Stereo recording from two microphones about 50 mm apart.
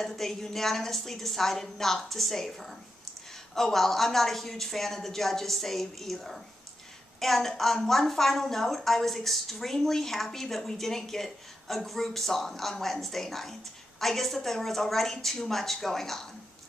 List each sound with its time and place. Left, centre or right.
0.0 s a woman's voice: centre